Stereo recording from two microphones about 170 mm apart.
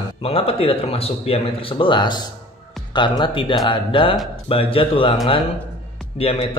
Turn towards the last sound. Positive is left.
turn(degrees=35)  # may be behind; listen again after turning